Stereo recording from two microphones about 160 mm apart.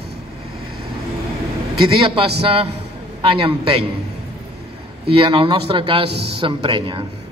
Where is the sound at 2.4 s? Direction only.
35° right (ahead or behind).